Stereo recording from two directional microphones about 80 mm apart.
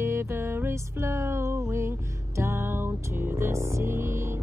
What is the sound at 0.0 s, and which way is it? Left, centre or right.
Music, right.